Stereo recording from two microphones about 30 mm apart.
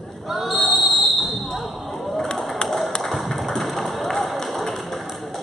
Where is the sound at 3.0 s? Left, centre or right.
Centre.